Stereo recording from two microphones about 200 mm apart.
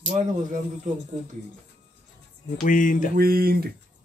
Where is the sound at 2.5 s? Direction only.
40° left (ahead or behind).